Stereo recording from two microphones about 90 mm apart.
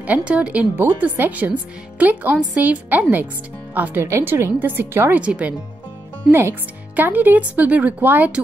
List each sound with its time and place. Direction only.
0.0 s speech: 15° right (ahead or behind)
7.0 s speech: 20° right (ahead or behind)